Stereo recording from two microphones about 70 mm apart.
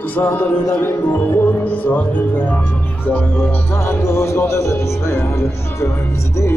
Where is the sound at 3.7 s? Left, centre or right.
Left.